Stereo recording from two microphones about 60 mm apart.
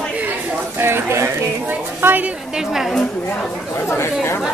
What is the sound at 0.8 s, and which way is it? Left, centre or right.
Speech, right.